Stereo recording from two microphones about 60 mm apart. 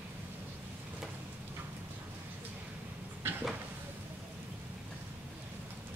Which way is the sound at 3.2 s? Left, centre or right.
Right.